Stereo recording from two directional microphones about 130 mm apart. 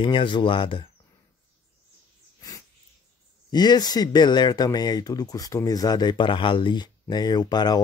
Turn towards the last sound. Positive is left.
turn(degrees=30)  # may be behind; listen again after turning